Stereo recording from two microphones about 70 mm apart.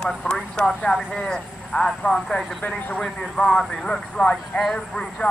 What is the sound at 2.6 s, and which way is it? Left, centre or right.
Speech, left.